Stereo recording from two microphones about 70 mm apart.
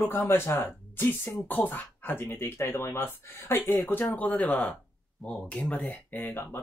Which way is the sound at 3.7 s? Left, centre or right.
Left.